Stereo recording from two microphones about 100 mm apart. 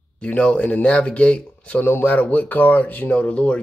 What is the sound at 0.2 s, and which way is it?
Speech, 10° left (ahead or behind).